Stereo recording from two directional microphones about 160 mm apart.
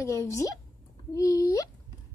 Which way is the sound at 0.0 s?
20° left (ahead or behind).